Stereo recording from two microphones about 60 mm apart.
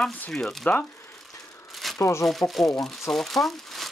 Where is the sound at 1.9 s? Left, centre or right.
Left.